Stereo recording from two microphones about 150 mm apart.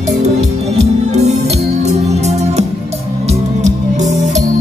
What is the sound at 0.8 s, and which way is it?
Music, 50° right (ahead or behind).